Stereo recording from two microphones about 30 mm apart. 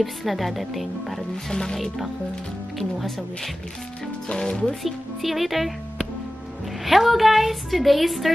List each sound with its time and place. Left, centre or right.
0.0 s a woman's voice: centre
1.5 s speech: centre
4.3 s speech: left
4.8 s a woman's voice: centre
6.8 s a woman's voice: centre